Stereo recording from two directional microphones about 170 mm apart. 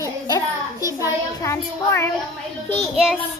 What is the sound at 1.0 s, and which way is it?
Child singing, 20° left (ahead or behind).